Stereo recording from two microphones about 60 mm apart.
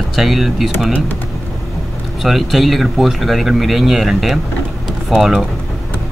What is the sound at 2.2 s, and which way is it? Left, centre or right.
Speech, centre.